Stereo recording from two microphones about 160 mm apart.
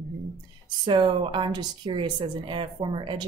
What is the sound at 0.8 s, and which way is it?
A woman's voice, 35° right (ahead or behind).